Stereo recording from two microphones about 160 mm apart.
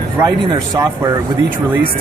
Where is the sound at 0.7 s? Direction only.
20° right (ahead or behind).